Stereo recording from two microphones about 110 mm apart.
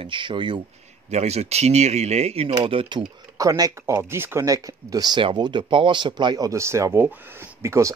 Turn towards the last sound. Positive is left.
turn(degrees=-25)  # may be behind; listen again after turning